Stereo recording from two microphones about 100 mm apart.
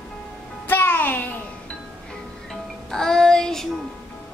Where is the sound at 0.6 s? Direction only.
20° left (ahead or behind).